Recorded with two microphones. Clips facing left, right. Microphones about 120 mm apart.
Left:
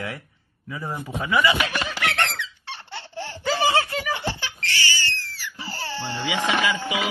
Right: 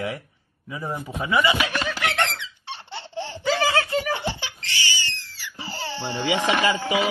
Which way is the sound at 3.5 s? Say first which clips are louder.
Left 2 dB; 25° left (ahead or behind).